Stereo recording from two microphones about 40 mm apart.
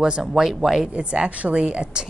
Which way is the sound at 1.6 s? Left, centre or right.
Right.